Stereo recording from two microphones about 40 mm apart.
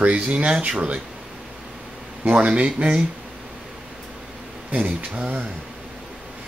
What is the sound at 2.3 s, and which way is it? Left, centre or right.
Speech, right.